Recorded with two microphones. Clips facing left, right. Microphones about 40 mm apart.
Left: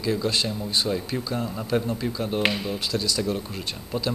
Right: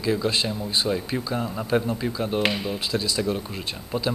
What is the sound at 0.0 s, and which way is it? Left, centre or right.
A man's voice, centre.